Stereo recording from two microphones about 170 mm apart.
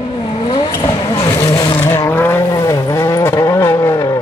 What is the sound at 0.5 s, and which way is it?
Vehicle, 25° left (ahead or behind).